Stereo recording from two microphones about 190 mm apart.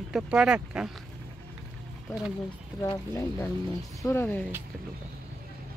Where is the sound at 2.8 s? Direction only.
20° left (ahead or behind).